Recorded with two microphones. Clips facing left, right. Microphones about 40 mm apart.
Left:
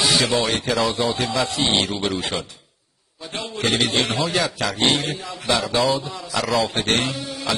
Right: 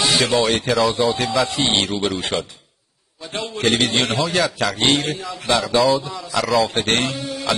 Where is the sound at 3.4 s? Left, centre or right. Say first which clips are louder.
Right 3 dB; centre.